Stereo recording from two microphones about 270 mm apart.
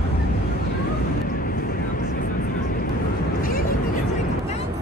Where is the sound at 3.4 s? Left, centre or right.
Left.